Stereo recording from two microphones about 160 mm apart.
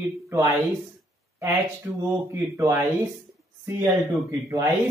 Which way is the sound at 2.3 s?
20° right (ahead or behind).